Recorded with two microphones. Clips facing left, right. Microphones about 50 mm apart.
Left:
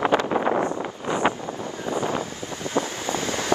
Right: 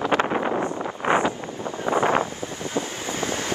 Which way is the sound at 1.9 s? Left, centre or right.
Right.